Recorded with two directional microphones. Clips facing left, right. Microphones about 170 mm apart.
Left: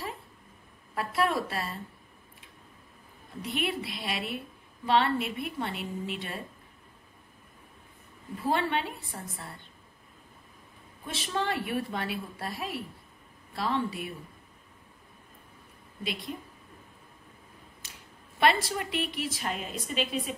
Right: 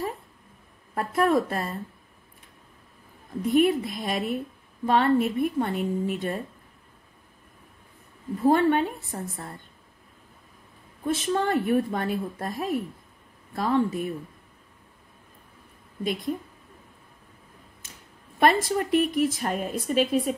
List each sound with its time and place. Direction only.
0.9 s a woman's voice: 45° right (ahead or behind)
3.4 s a woman's voice: 45° right (ahead or behind)
8.4 s a woman's voice: 45° right (ahead or behind)
11.1 s a woman's voice: 50° right (ahead or behind)
18.4 s a woman's voice: 45° right (ahead or behind)